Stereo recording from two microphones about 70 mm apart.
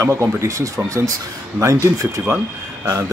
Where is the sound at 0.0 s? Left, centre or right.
Right.